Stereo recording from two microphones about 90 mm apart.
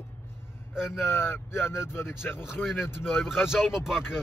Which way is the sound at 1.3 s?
25° left (ahead or behind).